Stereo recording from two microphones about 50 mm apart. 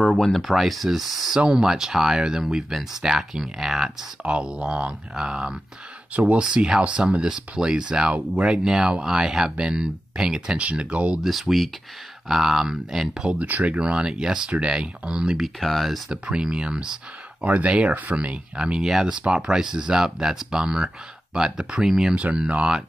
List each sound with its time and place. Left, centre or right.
0.1 s speech: centre
4.2 s speech: centre
10.6 s speech: right
11.2 s speech: centre
13.4 s speech: right
13.7 s speech: centre
15.4 s speech: centre
16.1 s speech: centre
17.4 s speech: right; by 22.1 s centre
22.5 s speech: centre